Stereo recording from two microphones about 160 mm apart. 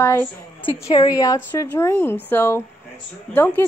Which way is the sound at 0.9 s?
25° left (ahead or behind).